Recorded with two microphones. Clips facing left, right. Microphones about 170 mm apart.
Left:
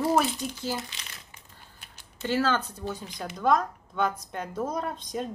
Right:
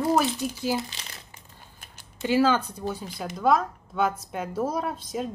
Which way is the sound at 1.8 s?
45° right (ahead or behind).